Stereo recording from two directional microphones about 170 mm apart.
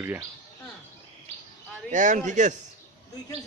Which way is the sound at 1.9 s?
45° right (ahead or behind).